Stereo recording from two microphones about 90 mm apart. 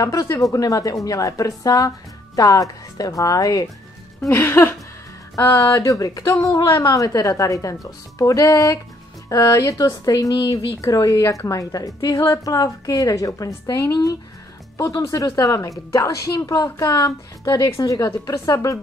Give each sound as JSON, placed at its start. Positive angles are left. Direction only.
{"t": 0.0, "sound": "a woman's voice", "side_deg": 40}
{"t": 4.3, "sound": "a sound", "side_deg": 25}
{"t": 5.8, "sound": "a woman's voice", "side_deg": 40}
{"t": 16.9, "sound": "a woman's voice", "side_deg": 50}